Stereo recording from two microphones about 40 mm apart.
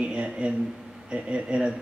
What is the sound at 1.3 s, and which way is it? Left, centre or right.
Speech, right.